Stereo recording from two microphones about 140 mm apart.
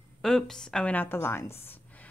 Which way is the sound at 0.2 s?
Centre (ahead or behind).